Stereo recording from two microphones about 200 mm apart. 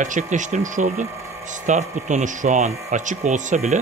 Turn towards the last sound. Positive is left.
turn(degrees=-35)  # may be behind; listen again after turning